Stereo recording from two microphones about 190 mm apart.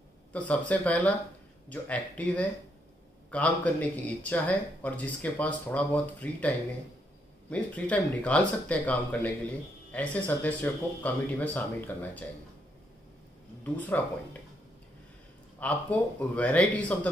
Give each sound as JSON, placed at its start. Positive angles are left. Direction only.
{"t": 0.3, "sound": "speech", "side_deg": 5}
{"t": 13.7, "sound": "speech", "side_deg": 10}
{"t": 15.6, "sound": "speech", "side_deg": 5}